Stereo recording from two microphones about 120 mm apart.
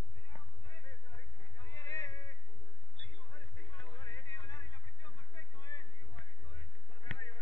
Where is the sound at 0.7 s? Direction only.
35° left (ahead or behind).